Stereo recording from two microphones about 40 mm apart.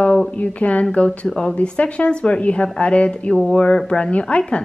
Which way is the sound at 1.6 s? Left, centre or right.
Left.